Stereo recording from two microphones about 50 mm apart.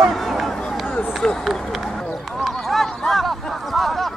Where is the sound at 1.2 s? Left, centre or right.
Centre.